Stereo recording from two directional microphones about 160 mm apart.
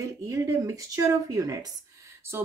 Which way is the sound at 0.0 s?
20° right (ahead or behind).